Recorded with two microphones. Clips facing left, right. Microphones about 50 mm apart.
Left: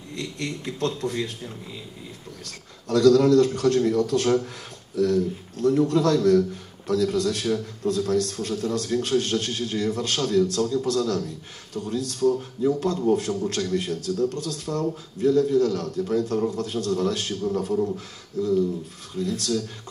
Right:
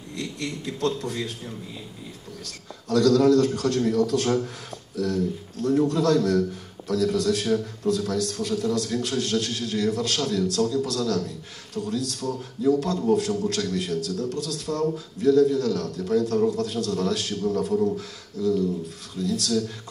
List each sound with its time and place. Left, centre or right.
0.1 s a man's voice: left
2.9 s a man's voice: left
5.9 s a man's voice: left